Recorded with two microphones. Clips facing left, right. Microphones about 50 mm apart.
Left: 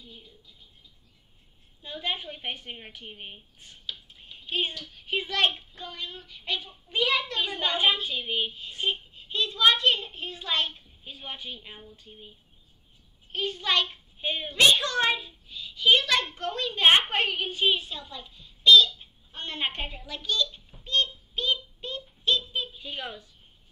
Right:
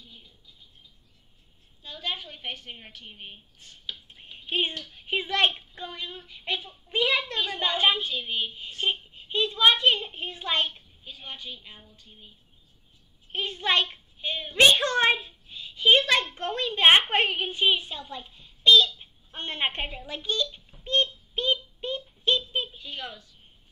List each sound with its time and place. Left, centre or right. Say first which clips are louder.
1.8 s a woman's voice: left 2 dB; centre
4.1 s a sound: right 3 dB; right
4.9 s a child's voice: right 2 dB; right
8.1 s a woman's voice: left 1 dB; centre
8.8 s a child's voice: right 1 dB; right
11.1 s a woman's voice: left 1 dB; centre
13.3 s a child's voice: right 1 dB; right
14.2 s a woman's voice: left 1 dB; centre
14.5 s a child's voice: right 2 dB; right
20.8 s child singing: right 2 dB; right
22.8 s a woman's voice: left 1 dB; centre